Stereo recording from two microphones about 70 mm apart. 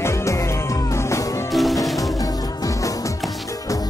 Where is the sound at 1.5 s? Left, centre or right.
Centre.